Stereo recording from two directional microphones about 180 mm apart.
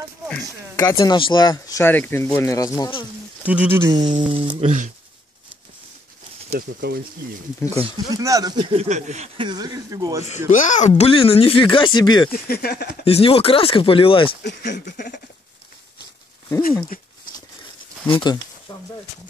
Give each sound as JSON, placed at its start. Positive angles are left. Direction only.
{"t": 0.4, "sound": "speech", "side_deg": 20}
{"t": 3.4, "sound": "speech", "side_deg": -10}
{"t": 7.6, "sound": "speech", "side_deg": 15}
{"t": 8.1, "sound": "speech", "side_deg": -20}
{"t": 9.5, "sound": "speech", "side_deg": -20}
{"t": 10.2, "sound": "speech", "side_deg": 40}
{"t": 12.3, "sound": "speech", "side_deg": 60}
{"t": 13.0, "sound": "speech", "side_deg": 35}
{"t": 14.4, "sound": "speech", "side_deg": 70}
{"t": 14.9, "sound": "a sound", "side_deg": 50}
{"t": 16.9, "sound": "speech", "side_deg": 50}
{"t": 18.0, "sound": "speech", "side_deg": 25}